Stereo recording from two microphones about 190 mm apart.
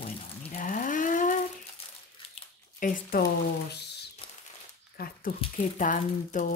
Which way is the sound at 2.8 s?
50° left (ahead or behind).